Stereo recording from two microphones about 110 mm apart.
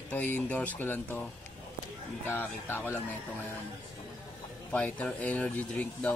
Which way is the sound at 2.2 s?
20° left (ahead or behind).